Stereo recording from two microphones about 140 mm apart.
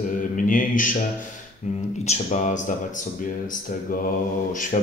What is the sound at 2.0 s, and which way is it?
Speech, 60° left (ahead or behind).